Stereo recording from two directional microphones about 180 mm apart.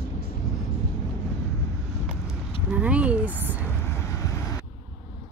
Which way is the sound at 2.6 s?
5° right (ahead or behind).